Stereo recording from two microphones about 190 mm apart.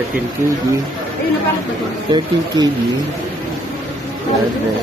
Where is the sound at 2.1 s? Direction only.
20° right (ahead or behind).